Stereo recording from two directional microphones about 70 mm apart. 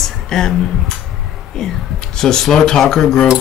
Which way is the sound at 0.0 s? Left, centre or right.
Centre.